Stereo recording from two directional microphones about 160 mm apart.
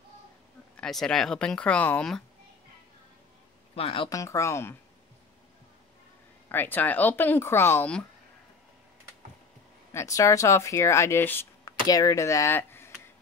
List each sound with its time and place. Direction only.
0.7 s speech: 5° left (ahead or behind)
3.7 s speech: 35° left (ahead or behind)
4.1 s speech: 20° left (ahead or behind)
6.5 s a woman's voice: 10° left (ahead or behind)
9.9 s speech: 20° left (ahead or behind)